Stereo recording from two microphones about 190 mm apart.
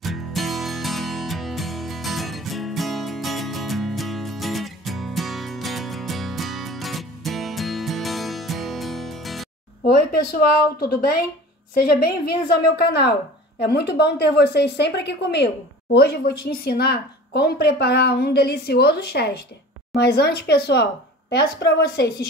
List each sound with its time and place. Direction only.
0.0 s music: centre (ahead or behind)
10.8 s a woman's voice: 55° left (ahead or behind)